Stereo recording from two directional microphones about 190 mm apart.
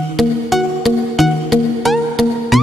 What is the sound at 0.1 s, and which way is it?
Music, centre (ahead or behind).